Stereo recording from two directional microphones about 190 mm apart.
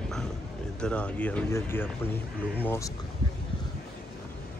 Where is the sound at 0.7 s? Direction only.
5° left (ahead or behind).